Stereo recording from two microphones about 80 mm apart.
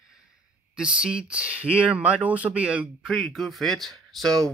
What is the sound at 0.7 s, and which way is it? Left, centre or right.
Speech, centre.